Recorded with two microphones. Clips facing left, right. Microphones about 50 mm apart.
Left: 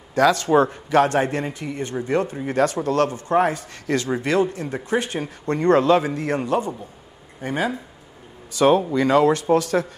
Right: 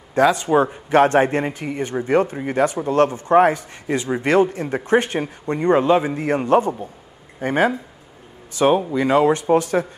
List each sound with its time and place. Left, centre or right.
0.1 s a man's voice: right
0.8 s a man's voice: right
3.8 s a man's voice: centre
4.3 s speech: right
5.2 s a man's voice: centre; by 7.7 s right
8.5 s a man's voice: centre